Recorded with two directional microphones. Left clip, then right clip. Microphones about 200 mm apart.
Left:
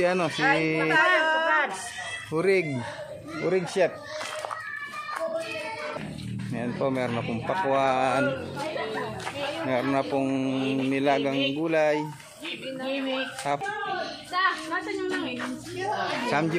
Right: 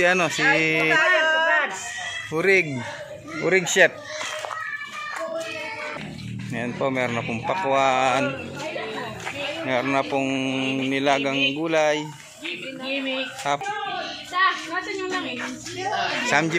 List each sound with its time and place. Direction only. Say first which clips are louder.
0.0 s speech: right 4 dB; centre (ahead or behind)
0.9 s a sound: right 1 dB; 35° left (ahead or behind)
2.3 s speech: right 4 dB; centre (ahead or behind)
3.7 s speech: right 7 dB; 10° right (ahead or behind)
6.5 s speech: right 3 dB; centre (ahead or behind)
13.4 s a woman's voice: right 3 dB; centre (ahead or behind)
16.1 s speech: right 7 dB; centre (ahead or behind)